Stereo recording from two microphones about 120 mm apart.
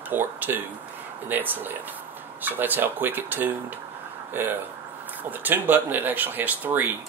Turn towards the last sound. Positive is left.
turn(degrees=-15)  # may be behind; listen again after turning